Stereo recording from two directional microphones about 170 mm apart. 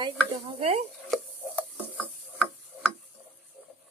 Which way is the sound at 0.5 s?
35° right (ahead or behind).